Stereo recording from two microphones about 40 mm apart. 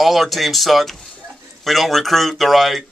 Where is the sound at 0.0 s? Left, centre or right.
Centre.